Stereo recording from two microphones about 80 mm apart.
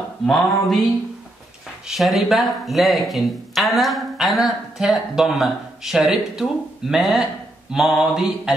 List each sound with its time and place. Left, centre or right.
0.3 s speech: centre
1.9 s speech: centre